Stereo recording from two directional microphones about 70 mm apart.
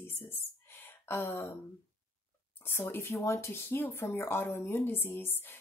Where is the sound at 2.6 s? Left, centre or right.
Left.